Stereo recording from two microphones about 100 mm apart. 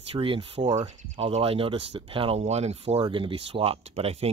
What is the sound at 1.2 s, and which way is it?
Speech, 85° right.